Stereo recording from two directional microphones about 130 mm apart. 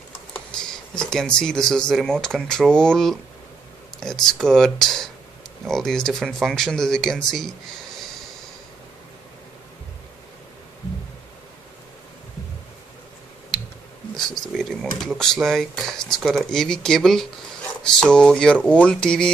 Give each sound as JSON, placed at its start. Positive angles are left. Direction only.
{"t": 0.3, "sound": "speech", "side_deg": 5}
{"t": 13.5, "sound": "a sound", "side_deg": 5}
{"t": 16.3, "sound": "speech", "side_deg": 5}